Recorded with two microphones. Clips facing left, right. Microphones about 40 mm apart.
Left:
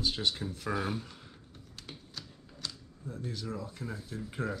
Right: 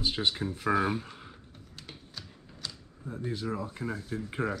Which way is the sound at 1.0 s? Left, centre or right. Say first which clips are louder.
Right 4 dB; right.